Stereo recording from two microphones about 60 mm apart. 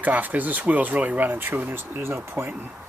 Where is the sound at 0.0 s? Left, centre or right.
Right.